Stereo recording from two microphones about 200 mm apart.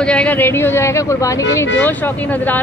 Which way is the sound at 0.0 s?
5° left (ahead or behind).